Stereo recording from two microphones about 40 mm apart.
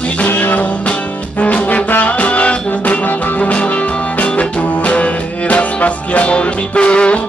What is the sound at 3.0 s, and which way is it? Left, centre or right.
Music, left.